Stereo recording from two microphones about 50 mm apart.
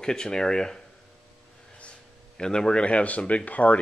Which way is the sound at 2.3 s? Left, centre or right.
Centre.